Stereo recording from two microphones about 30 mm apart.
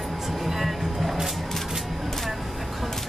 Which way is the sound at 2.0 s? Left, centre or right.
Centre.